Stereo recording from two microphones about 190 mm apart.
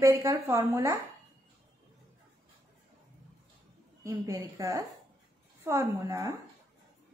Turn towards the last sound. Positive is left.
turn(degrees=-15)  # may be behind; listen again after turning